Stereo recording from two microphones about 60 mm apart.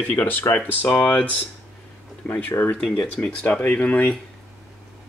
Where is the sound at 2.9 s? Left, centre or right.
Centre.